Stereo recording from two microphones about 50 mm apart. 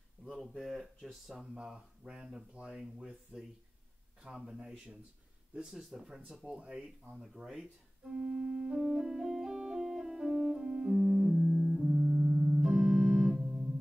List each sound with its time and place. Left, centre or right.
0.2 s speech: centre
1.4 s speech: right
2.8 s speech: centre
6.4 s speech: centre
7.1 s speech: centre
9.8 s keyboard: centre
11.8 s organ: centre